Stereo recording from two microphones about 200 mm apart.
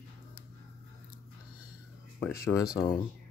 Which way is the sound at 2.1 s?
10° left (ahead or behind).